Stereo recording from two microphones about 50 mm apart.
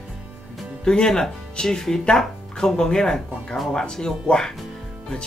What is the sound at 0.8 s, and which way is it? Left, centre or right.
Speech, centre.